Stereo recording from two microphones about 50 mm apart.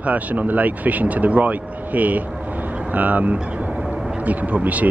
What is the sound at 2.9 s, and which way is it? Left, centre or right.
Vehicle, right.